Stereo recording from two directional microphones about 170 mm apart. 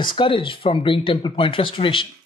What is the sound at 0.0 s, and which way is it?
A woman's voice, 30° left (ahead or behind).